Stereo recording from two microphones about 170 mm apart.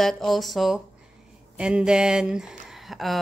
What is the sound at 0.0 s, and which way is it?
Speech, centre (ahead or behind).